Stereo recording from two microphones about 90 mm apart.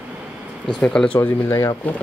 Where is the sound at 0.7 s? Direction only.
5° left (ahead or behind).